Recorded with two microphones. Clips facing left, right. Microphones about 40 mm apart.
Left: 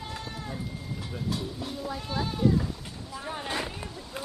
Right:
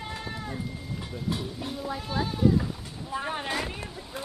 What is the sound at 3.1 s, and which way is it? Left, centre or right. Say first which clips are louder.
Speech: right 5 dB; right.